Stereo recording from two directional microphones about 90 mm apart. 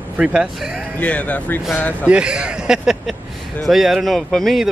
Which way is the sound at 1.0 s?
15° left (ahead or behind).